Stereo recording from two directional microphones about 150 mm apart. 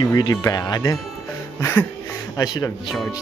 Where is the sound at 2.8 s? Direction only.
Centre (ahead or behind).